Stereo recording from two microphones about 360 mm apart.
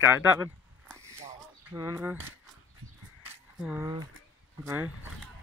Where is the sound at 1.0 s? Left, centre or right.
Centre.